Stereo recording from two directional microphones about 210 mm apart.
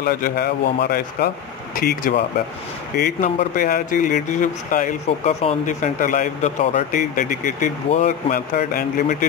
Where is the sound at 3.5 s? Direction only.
40° left (ahead or behind).